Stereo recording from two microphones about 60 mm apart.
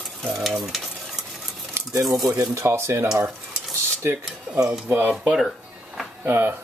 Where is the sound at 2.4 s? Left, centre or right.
Right.